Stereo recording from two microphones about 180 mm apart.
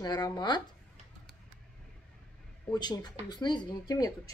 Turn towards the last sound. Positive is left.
turn(degrees=20)  # may be behind; listen again after turning